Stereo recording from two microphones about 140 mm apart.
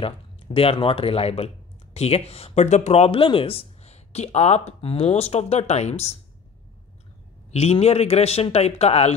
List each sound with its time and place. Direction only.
0.0 s speech: 45° left (ahead or behind)
7.5 s speech: 50° left (ahead or behind)